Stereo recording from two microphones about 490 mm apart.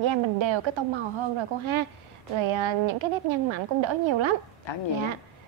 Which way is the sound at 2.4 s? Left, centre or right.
Right.